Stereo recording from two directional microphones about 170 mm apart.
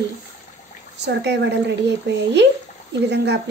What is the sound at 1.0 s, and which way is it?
A woman's voice, 90° right.